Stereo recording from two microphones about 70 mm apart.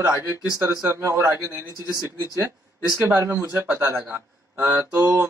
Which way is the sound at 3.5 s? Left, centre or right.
Right.